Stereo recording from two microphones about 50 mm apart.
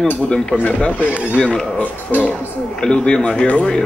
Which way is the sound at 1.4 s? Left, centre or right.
Centre.